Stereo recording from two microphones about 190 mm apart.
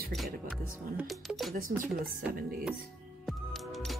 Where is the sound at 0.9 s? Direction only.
Centre (ahead or behind).